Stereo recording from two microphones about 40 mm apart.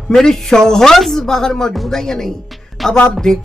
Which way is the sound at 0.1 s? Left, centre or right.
Centre.